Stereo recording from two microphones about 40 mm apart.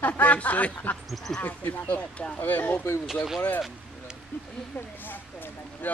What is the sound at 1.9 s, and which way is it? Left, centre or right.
Speech, left.